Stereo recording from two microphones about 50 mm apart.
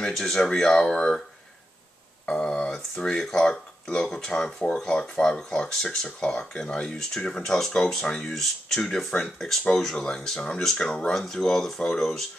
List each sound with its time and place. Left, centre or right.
0.1 s speech: centre
2.4 s speech: centre
9.9 s speech: centre